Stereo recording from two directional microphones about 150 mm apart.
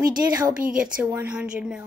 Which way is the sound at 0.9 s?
10° right (ahead or behind).